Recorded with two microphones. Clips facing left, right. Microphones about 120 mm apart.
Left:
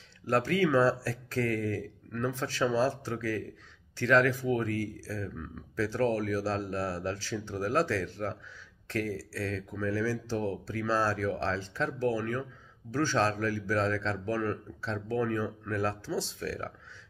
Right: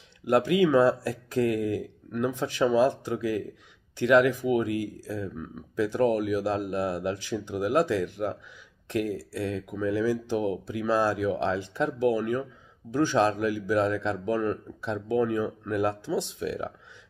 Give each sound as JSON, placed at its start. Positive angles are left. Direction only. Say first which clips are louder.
{"t": 0.3, "sound": "speech", "louder": "right 5 dB", "side_deg": -15}